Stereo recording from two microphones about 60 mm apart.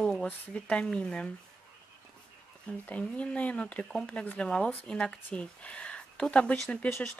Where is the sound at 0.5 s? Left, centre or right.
Centre.